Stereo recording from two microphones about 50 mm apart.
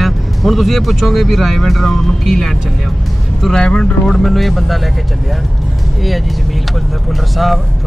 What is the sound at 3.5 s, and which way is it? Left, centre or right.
Speech, centre.